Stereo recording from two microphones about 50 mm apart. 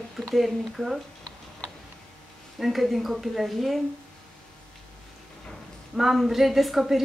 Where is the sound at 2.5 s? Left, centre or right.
Centre.